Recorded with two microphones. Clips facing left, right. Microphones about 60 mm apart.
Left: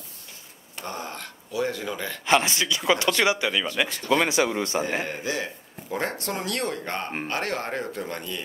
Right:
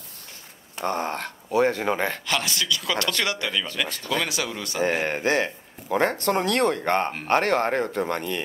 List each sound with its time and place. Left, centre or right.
0.8 s speech: right
2.2 s speech: left
5.0 s speech: right